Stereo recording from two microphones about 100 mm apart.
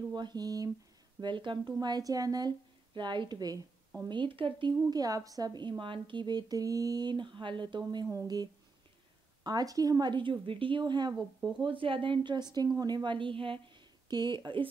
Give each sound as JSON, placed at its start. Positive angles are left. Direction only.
{"t": 0.1, "sound": "speech", "side_deg": -45}
{"t": 1.2, "sound": "speech", "side_deg": -55}
{"t": 1.8, "sound": "speech", "side_deg": -40}
{"t": 4.1, "sound": "speech", "side_deg": -55}
{"t": 5.6, "sound": "speech", "side_deg": -55}
{"t": 9.4, "sound": "speech", "side_deg": -40}
{"t": 11.6, "sound": "a woman's voice", "side_deg": -60}
{"t": 14.0, "sound": "speech", "side_deg": -45}